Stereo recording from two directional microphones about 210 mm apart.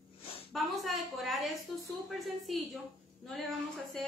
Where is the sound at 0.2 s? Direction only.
25° left (ahead or behind).